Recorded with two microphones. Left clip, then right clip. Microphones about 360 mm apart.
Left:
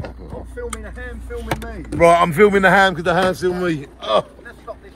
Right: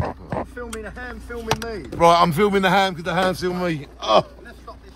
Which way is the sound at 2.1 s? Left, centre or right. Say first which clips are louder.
Left 3 dB; centre.